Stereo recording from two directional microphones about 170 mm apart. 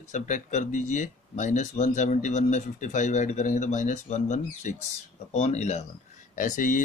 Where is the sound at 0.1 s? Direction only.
45° left (ahead or behind).